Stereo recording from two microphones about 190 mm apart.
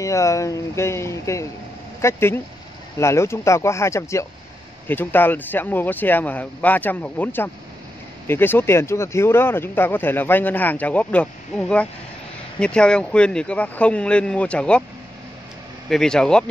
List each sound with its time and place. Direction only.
0.0 s speech: 15° left (ahead or behind)
15.9 s speech: 5° left (ahead or behind)